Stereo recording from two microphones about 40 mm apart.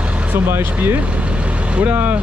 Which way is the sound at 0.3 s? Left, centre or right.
Right.